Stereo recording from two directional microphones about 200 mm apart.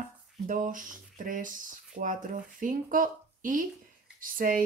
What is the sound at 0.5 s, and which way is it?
Speech, 40° right (ahead or behind).